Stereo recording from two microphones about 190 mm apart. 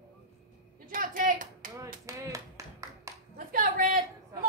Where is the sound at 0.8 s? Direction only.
45° right (ahead or behind).